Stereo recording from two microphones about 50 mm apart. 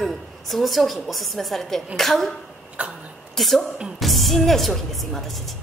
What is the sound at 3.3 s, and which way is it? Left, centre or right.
A woman's voice, centre.